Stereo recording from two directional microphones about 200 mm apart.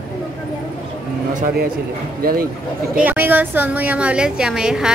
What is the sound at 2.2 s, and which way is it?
Speech, 45° right (ahead or behind).